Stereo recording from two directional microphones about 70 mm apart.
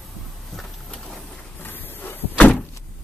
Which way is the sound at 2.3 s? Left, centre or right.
Centre.